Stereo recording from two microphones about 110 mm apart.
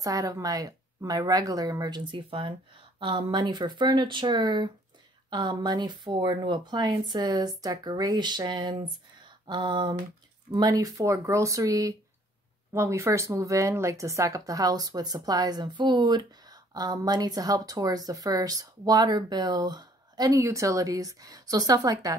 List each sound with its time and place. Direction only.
0.0 s speech: 30° right (ahead or behind)
9.5 s a sound: 45° right (ahead or behind)
10.5 s speech: 35° right (ahead or behind)